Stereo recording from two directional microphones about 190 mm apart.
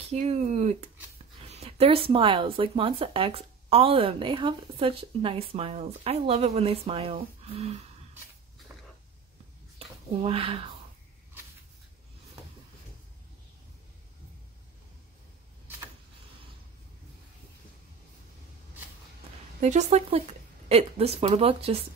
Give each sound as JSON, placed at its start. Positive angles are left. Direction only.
{"t": 0.2, "sound": "speech", "side_deg": -35}
{"t": 9.8, "sound": "a sound", "side_deg": -30}
{"t": 19.6, "sound": "speech", "side_deg": -40}